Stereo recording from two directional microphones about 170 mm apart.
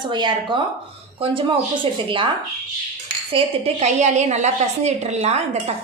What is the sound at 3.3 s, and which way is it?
A woman's voice, 40° right (ahead or behind).